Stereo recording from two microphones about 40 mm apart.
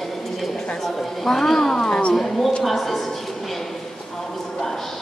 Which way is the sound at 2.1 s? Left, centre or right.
Centre.